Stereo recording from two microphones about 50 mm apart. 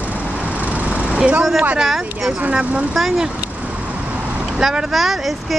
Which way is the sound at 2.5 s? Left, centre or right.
Right.